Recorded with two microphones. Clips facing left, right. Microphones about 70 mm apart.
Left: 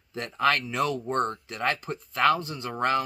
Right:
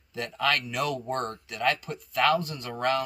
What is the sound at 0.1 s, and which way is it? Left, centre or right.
Speech, left.